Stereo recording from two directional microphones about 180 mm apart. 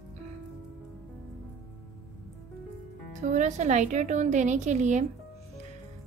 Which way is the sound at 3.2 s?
40° right (ahead or behind).